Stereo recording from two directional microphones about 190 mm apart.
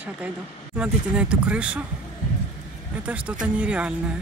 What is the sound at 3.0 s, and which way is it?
Speech, 5° right (ahead or behind).